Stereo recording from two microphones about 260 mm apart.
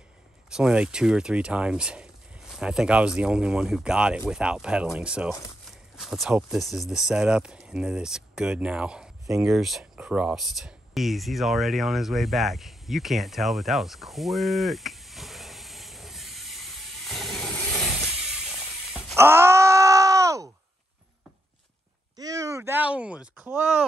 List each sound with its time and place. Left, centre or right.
0.5 s speech: centre
18.9 s groan: centre
22.1 s a sound: centre